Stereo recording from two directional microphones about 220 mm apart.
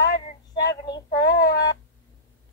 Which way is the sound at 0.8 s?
20° left (ahead or behind).